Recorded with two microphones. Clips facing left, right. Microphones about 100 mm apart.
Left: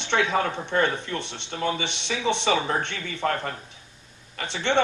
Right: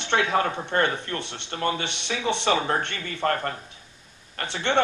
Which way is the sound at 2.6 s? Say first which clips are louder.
Right 1 dB; 15° right (ahead or behind).